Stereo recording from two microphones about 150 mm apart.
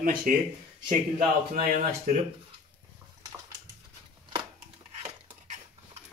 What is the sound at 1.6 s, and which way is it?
Speech, 60° right (ahead or behind).